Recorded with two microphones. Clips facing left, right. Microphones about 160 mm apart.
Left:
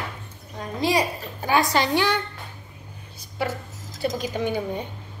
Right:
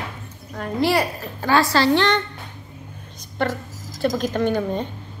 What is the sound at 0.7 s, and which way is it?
A woman's voice, 15° left (ahead or behind).